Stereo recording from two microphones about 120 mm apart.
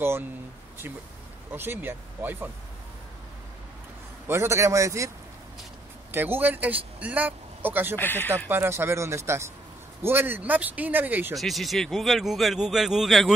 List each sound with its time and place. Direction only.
1.5 s speech: 15° right (ahead or behind)
4.3 s speech: 25° right (ahead or behind)
6.1 s speech: 15° right (ahead or behind)
7.9 s speech: 15° left (ahead or behind)
8.5 s speech: 20° right (ahead or behind)
11.3 s speech: centre (ahead or behind)